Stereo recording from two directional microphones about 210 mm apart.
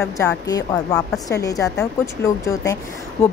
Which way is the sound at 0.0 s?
10° left (ahead or behind).